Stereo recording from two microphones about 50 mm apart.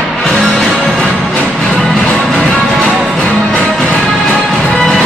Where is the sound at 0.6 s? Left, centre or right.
Centre.